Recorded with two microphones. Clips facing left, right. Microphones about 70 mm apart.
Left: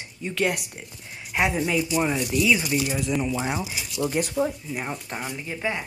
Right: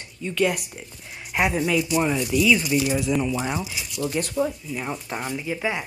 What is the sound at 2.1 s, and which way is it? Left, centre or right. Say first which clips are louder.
Speech: right 2 dB; centre.